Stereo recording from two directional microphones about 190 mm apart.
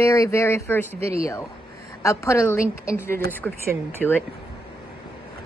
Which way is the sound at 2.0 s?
15° left (ahead or behind).